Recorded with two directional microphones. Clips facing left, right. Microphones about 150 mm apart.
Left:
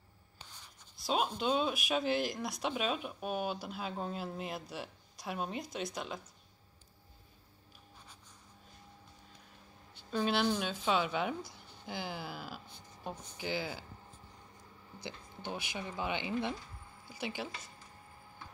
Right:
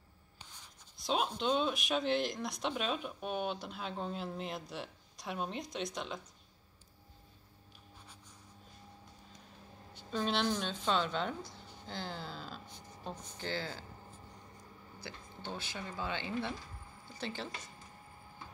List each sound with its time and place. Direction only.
0.9 s speech: 5° left (ahead or behind)
10.1 s a woman's voice: 5° left (ahead or behind)
15.0 s a woman's voice: 15° left (ahead or behind)